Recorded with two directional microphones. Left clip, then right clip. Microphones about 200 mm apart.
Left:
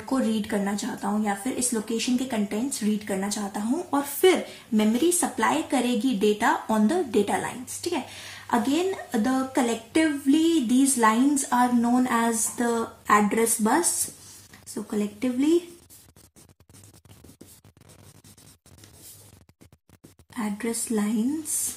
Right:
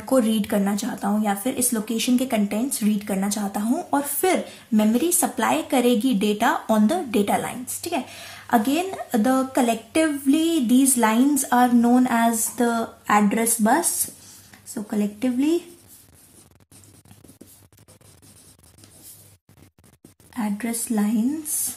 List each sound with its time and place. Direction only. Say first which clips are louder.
0.0 s speech: right 6 dB; 40° right (ahead or behind)
20.3 s speech: right 2 dB; 35° right (ahead or behind)